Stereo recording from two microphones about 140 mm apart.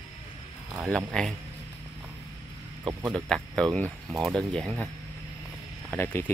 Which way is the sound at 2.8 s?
25° right (ahead or behind).